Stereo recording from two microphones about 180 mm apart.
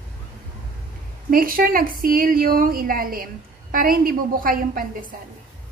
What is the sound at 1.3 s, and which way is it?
A woman's voice, 50° right (ahead or behind).